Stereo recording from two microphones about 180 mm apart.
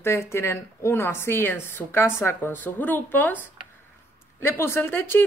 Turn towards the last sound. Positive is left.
turn(degrees=10)  # may be behind; listen again after turning